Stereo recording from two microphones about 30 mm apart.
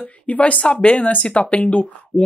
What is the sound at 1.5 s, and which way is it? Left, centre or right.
Speech, left.